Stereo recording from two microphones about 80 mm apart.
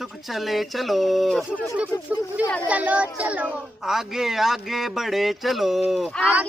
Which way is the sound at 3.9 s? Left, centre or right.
Centre.